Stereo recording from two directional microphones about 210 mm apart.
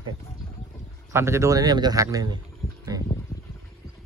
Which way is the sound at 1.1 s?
15° right (ahead or behind).